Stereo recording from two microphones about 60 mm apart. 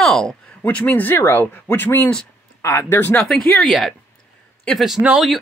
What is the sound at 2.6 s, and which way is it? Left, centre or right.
Speech, left.